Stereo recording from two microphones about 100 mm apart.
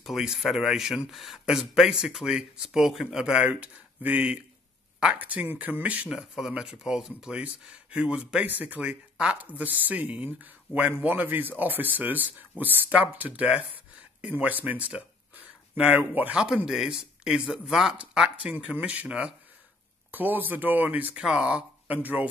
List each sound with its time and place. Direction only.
0.0 s speech: 5° right (ahead or behind)
6.0 s speech: 5° right (ahead or behind)